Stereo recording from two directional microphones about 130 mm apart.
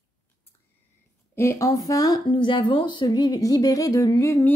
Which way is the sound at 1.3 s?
20° left (ahead or behind).